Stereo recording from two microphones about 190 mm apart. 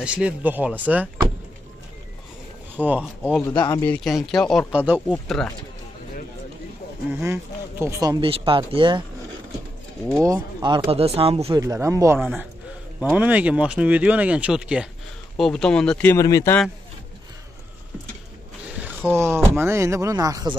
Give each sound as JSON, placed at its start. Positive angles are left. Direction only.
{"t": 0.0, "sound": "speech", "side_deg": -5}
{"t": 2.7, "sound": "speech", "side_deg": -10}
{"t": 3.4, "sound": "speech", "side_deg": 20}
{"t": 3.8, "sound": "speech", "side_deg": 5}
{"t": 5.0, "sound": "speech", "side_deg": 5}
{"t": 7.1, "sound": "speech", "side_deg": -10}
{"t": 7.8, "sound": "speech", "side_deg": -20}
{"t": 10.1, "sound": "speech", "side_deg": -15}
{"t": 10.9, "sound": "speech", "side_deg": -30}
{"t": 11.6, "sound": "speech", "side_deg": -15}
{"t": 18.8, "sound": "speech", "side_deg": -10}